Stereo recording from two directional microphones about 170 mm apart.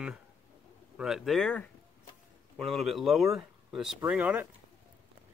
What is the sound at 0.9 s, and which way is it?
Speech, centre (ahead or behind).